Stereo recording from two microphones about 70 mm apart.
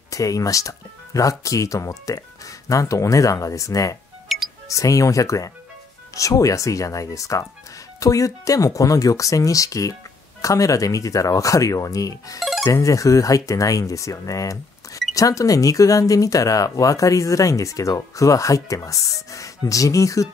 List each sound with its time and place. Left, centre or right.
0.1 s speech: left
4.3 s music: centre
4.6 s speech: left